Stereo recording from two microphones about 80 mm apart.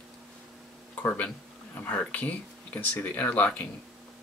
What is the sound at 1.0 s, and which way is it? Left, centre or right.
Speech, left.